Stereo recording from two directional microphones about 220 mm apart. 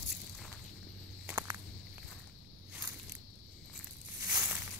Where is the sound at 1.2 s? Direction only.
10° right (ahead or behind).